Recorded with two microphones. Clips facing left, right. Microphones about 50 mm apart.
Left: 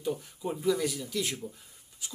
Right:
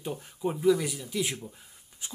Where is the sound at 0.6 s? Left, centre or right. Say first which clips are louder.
Right 4 dB; centre.